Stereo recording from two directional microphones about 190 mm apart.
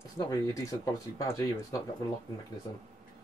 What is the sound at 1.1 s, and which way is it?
Speech, 15° left (ahead or behind).